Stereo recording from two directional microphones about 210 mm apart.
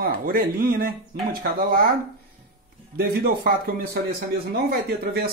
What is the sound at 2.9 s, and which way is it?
Speech, 50° right (ahead or behind).